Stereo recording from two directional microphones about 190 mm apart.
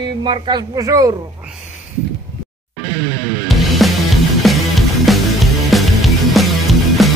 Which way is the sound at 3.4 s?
Centre (ahead or behind).